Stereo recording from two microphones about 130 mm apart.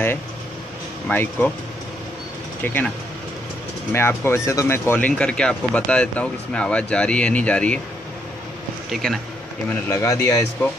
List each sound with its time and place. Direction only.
1.0 s speech: 15° left (ahead or behind)
2.6 s speech: 15° left (ahead or behind)
3.9 s speech: 20° left (ahead or behind)
8.9 s a man's voice: centre (ahead or behind)
9.8 s speech: 25° left (ahead or behind)